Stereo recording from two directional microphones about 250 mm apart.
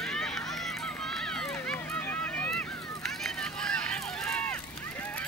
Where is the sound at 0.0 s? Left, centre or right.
Centre.